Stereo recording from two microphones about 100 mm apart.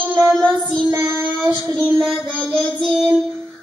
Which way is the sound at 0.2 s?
10° left (ahead or behind).